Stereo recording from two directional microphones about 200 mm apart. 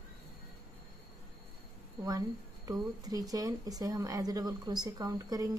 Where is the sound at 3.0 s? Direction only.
20° right (ahead or behind).